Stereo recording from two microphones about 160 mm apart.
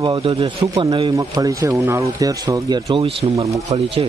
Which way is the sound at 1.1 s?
20° right (ahead or behind).